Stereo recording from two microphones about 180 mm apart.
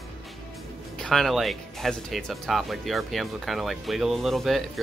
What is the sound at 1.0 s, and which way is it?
Speech, centre (ahead or behind).